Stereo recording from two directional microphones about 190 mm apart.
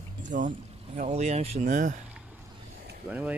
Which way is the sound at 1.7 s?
45° right (ahead or behind).